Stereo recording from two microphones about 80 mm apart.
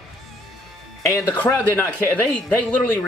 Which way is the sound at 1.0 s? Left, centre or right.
Left.